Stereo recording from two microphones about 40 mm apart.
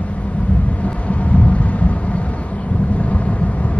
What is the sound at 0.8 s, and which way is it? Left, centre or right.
Vehicle, left.